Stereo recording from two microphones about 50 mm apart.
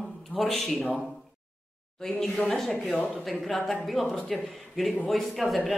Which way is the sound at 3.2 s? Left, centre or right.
Centre.